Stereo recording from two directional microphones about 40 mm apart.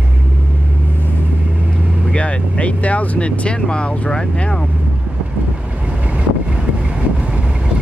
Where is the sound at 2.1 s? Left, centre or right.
Left.